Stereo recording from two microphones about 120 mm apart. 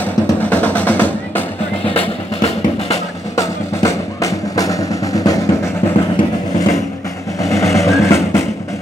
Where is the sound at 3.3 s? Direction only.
25° left (ahead or behind).